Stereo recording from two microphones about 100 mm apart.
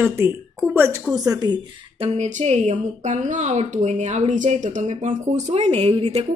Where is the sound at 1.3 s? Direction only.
40° right (ahead or behind).